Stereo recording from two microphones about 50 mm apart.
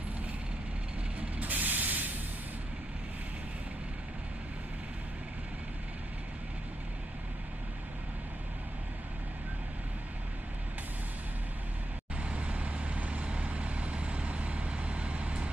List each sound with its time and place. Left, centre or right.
1.4 s spray: right
12.2 s vehicle: right